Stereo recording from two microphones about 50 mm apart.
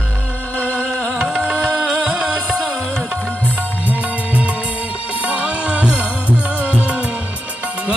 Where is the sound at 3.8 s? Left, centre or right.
Right.